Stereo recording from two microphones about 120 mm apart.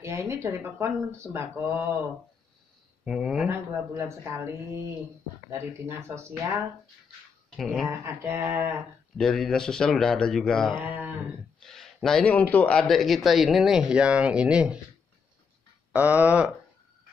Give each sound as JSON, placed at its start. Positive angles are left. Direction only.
{"t": 0.0, "sound": "speech", "side_deg": -25}
{"t": 3.1, "sound": "speech", "side_deg": 0}
{"t": 3.4, "sound": "speech", "side_deg": -20}
{"t": 7.5, "sound": "speech", "side_deg": 0}
{"t": 8.0, "sound": "speech", "side_deg": -20}
{"t": 9.2, "sound": "speech", "side_deg": 5}
{"t": 10.8, "sound": "speech", "side_deg": -15}
{"t": 11.6, "sound": "speech", "side_deg": 5}
{"t": 15.9, "sound": "a sound", "side_deg": -10}